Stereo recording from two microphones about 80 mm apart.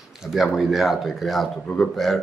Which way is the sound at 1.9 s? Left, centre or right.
Centre.